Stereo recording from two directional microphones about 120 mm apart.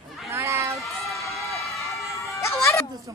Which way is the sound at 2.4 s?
25° left (ahead or behind).